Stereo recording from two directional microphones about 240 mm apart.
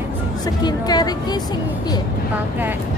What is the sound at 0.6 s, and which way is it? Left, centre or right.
Speech, centre.